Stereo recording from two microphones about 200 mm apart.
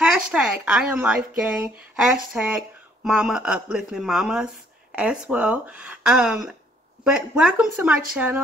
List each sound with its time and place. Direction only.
0.0 s speech: 5° right (ahead or behind)